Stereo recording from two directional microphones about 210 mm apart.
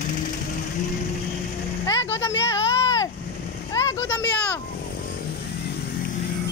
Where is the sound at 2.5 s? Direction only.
15° left (ahead or behind).